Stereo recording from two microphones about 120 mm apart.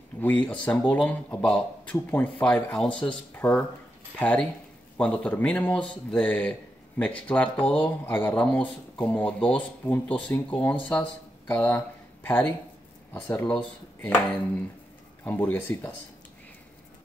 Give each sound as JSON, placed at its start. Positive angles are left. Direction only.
{"t": 0.2, "sound": "speech", "side_deg": 15}
{"t": 15.2, "sound": "speech", "side_deg": 15}